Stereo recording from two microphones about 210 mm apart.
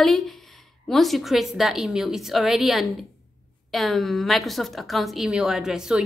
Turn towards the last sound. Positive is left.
turn(degrees=-5)  # may be behind; listen again after turning